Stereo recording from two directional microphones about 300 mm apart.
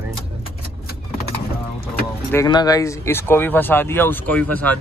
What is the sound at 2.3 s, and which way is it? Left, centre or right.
Speech, centre.